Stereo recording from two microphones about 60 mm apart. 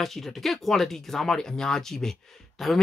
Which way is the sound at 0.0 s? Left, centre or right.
Centre.